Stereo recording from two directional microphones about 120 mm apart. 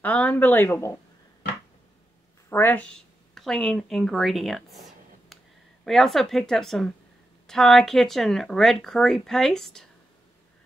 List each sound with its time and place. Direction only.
0.0 s speech: 10° left (ahead or behind)
2.5 s speech: 15° left (ahead or behind); by 4.7 s centre (ahead or behind)
5.9 s speech: centre (ahead or behind)